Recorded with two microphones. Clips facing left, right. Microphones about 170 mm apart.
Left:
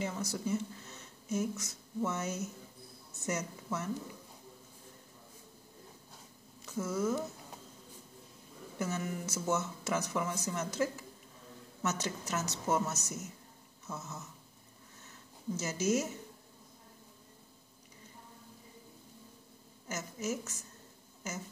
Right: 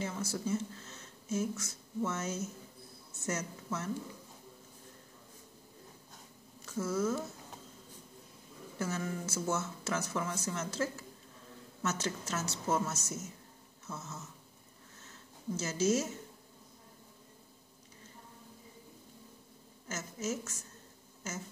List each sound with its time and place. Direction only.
0.0 s speech: 15° left (ahead or behind)
6.6 s speech: 15° left (ahead or behind)
8.7 s speech: 20° left (ahead or behind)
15.5 s speech: 15° left (ahead or behind)
19.9 s speech: 15° left (ahead or behind)